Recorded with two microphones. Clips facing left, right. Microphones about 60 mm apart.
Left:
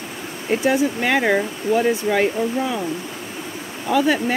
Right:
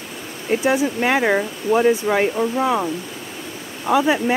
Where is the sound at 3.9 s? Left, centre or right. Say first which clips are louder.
Right 1 dB; centre.